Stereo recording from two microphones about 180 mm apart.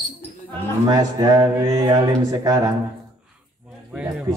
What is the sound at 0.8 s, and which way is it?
A man's voice, 20° right (ahead or behind).